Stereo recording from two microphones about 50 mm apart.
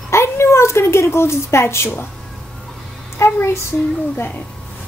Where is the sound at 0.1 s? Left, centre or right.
Left.